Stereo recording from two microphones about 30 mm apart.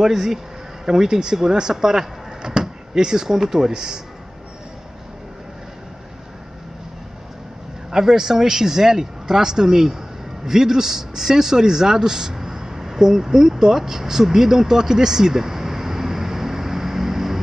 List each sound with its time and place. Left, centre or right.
0.0 s speech: centre
8.0 s speech: centre